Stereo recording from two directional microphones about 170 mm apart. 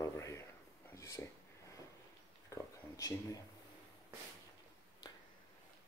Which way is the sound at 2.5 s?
20° left (ahead or behind).